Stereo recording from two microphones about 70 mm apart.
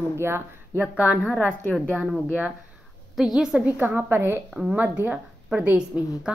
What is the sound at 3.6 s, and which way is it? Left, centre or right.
A woman's voice, right.